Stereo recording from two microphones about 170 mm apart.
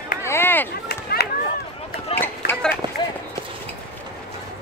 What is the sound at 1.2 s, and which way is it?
Chop, 70° left (ahead or behind).